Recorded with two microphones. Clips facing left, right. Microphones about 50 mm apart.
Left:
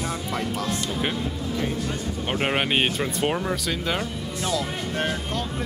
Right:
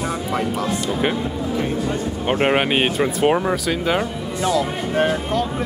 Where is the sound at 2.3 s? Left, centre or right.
Centre.